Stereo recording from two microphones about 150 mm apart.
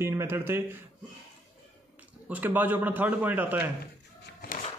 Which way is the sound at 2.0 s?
10° right (ahead or behind).